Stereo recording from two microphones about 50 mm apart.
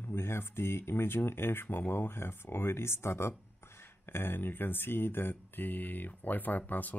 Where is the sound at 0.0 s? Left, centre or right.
Left.